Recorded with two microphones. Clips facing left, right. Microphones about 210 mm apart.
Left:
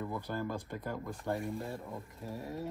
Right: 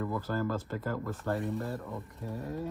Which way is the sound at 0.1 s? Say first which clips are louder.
Right 5 dB; 20° left (ahead or behind).